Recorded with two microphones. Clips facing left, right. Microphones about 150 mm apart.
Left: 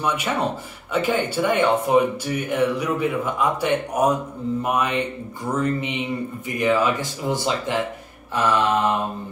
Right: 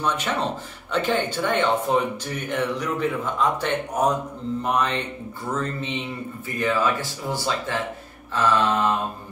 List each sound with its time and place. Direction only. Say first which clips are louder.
0.0 s speech: left 2 dB; 10° left (ahead or behind)